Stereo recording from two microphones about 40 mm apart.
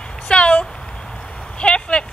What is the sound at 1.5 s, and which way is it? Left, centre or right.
Vehicle, left.